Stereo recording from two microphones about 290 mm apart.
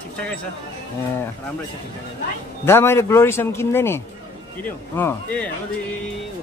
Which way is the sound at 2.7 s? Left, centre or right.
Centre.